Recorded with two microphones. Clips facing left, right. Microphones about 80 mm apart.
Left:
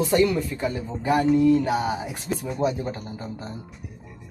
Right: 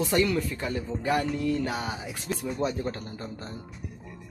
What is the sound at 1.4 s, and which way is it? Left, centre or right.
Mantra, centre.